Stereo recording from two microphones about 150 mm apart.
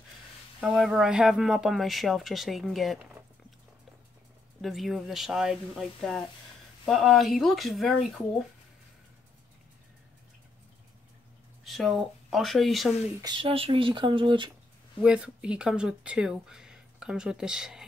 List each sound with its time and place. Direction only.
0.6 s speech: 5° right (ahead or behind)
4.6 s speech: centre (ahead or behind)
11.6 s speech: centre (ahead or behind)
13.2 s speech: 30° right (ahead or behind)
15.0 s speech: 5° right (ahead or behind)